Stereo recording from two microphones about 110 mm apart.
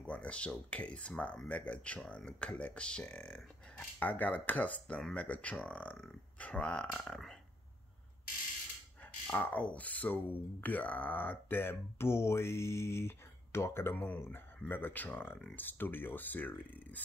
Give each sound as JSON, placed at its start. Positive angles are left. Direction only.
{"t": 0.0, "sound": "speech", "side_deg": 10}
{"t": 9.3, "sound": "speech", "side_deg": 15}